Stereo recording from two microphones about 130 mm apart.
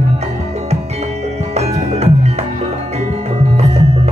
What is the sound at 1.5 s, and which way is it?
Music, 55° right (ahead or behind).